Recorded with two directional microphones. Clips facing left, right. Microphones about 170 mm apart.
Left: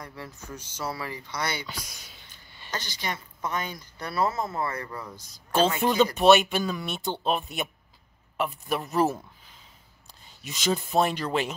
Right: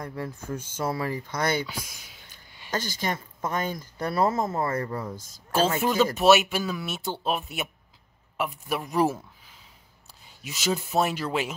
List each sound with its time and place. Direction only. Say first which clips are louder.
0.0 s speech: right 7 dB; 50° right (ahead or behind)
1.7 s speech: right 2 dB; 10° right (ahead or behind)
2.7 s speech: right 4 dB; 45° right (ahead or behind)
5.8 s speech: left 1 dB; 5° right (ahead or behind)